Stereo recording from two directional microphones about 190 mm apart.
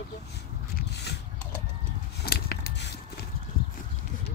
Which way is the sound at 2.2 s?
55° left (ahead or behind).